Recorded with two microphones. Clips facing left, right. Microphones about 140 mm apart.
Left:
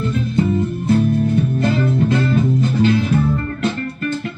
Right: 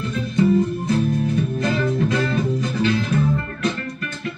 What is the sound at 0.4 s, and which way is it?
Music, 30° left (ahead or behind).